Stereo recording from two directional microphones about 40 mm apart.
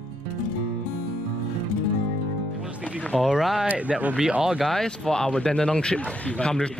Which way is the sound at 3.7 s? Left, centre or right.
Right.